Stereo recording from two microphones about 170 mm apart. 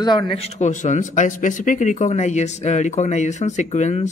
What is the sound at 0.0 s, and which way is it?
Speech, 30° left (ahead or behind).